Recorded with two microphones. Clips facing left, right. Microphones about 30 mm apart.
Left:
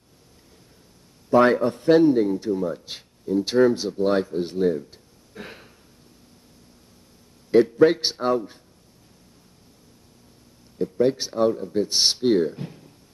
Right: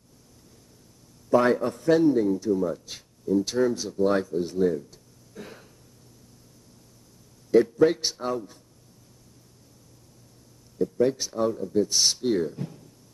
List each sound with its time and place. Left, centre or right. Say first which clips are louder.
1.3 s speech: left 4 dB; left
7.5 s speech: left 3 dB; left
10.8 s speech: left 2 dB; left